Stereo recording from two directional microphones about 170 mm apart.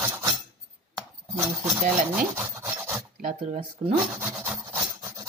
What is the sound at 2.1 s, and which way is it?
Rub, 15° right (ahead or behind).